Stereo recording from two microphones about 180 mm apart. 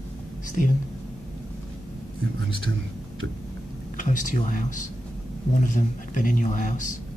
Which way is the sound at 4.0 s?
45° left (ahead or behind).